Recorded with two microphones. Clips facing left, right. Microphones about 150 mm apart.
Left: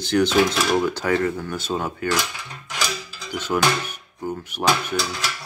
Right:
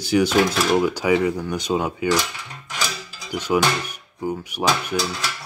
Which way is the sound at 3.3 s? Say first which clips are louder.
Right 1 dB; 10° right (ahead or behind).